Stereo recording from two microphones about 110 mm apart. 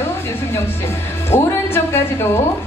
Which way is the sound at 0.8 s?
20° left (ahead or behind).